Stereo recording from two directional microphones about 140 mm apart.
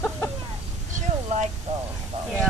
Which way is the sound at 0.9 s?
60° right (ahead or behind).